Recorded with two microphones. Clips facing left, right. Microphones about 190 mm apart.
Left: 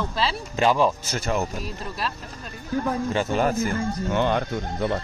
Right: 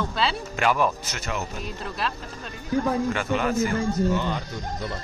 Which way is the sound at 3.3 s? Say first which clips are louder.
Left 4 dB; 40° left (ahead or behind).